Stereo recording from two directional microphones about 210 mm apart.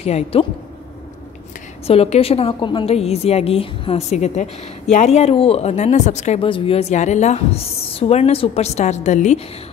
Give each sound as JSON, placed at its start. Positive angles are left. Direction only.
{"t": 0.0, "sound": "a woman's voice", "side_deg": 30}
{"t": 1.9, "sound": "a woman's voice", "side_deg": 30}